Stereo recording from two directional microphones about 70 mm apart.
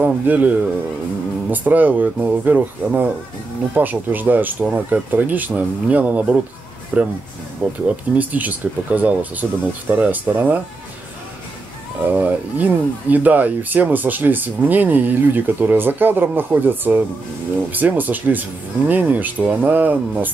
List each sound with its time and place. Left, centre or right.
0.0 s speech: right
12.0 s speech: right